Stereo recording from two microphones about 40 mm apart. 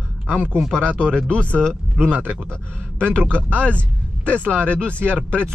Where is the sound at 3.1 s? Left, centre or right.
Left.